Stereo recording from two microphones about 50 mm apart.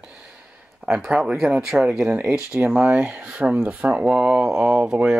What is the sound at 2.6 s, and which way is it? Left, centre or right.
Speech, right.